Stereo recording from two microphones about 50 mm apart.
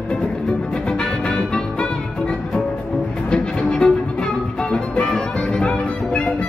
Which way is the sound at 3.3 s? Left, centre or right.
Centre.